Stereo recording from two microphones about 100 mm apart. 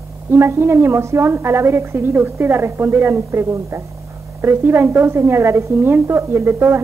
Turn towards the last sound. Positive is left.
turn(degrees=-25)  # may be behind; listen again after turning